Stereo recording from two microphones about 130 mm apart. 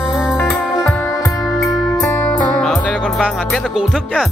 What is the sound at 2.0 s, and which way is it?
Music, 15° left (ahead or behind).